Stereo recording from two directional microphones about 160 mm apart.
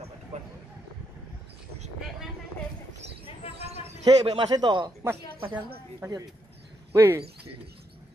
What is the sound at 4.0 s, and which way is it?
Speech, 25° right (ahead or behind).